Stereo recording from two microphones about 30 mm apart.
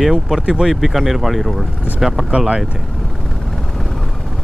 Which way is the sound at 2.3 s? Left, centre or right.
Right.